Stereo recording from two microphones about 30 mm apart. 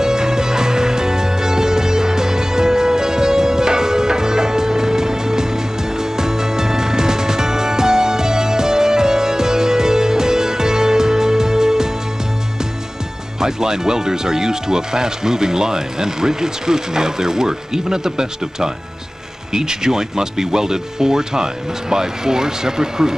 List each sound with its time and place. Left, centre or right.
0.0 s music: right
13.4 s speech: centre